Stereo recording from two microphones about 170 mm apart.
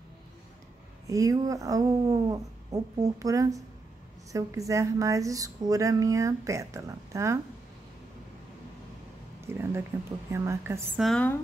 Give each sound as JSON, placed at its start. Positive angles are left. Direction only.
{"t": 1.0, "sound": "speech", "side_deg": -20}
{"t": 9.5, "sound": "a woman's voice", "side_deg": -15}
{"t": 11.0, "sound": "speech", "side_deg": 5}